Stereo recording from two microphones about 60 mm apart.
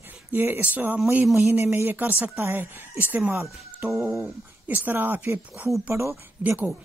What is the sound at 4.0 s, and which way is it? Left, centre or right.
Speech, right.